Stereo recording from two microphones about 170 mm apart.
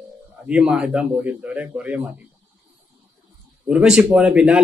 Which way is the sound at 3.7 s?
5° right (ahead or behind).